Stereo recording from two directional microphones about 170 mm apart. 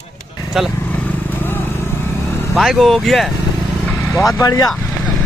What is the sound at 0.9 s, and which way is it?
Vehicle, 10° left (ahead or behind).